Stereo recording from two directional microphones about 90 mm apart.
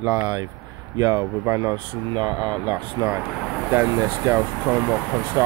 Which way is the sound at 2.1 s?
50° right (ahead or behind).